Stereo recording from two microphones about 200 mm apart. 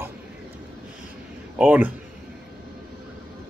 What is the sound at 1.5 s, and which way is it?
Speech, 5° right (ahead or behind).